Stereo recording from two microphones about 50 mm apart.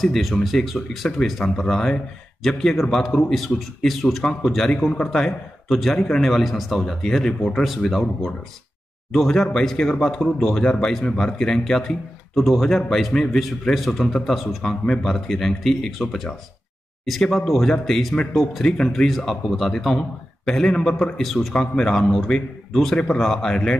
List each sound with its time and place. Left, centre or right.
0.0 s speech: centre
1.1 s a man's voice: centre
5.7 s speech: centre
9.3 s a man's voice: centre
21.2 s speech: centre
21.5 s a man's voice: centre